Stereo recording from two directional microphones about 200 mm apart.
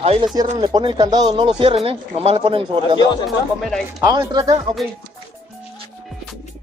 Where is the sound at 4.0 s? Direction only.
20° right (ahead or behind).